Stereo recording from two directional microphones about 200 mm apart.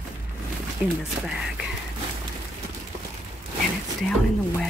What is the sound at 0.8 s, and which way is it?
Speech, 5° right (ahead or behind).